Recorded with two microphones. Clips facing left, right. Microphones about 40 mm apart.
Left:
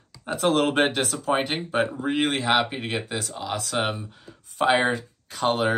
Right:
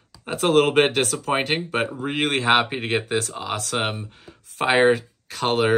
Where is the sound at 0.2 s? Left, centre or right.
Right.